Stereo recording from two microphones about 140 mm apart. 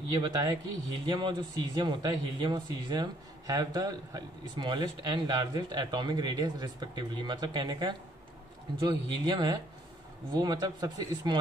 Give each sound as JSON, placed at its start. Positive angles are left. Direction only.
{"t": 0.2, "sound": "a man's voice", "side_deg": -30}